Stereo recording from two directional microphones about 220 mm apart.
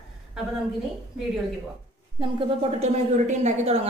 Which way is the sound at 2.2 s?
25° right (ahead or behind).